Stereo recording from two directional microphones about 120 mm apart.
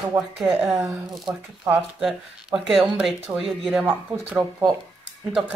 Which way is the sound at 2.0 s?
Centre (ahead or behind).